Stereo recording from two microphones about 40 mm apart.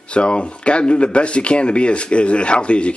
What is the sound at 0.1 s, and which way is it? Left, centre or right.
Speech, left.